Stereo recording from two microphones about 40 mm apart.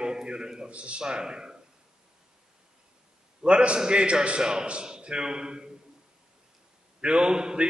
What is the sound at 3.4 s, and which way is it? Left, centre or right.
A man's voice, right.